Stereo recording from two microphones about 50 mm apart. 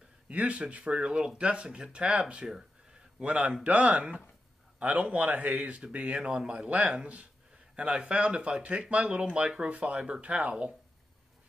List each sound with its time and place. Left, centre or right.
0.3 s speech: right
6.1 s speech: centre